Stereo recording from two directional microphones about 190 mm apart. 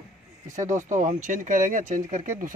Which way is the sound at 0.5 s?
40° right (ahead or behind).